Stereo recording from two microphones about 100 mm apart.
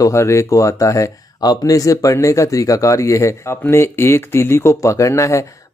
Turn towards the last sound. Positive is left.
turn(degrees=30)  # may be behind; listen again after turning